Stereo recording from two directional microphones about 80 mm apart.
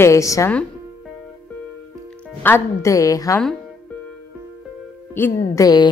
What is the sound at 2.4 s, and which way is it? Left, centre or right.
Speech, left.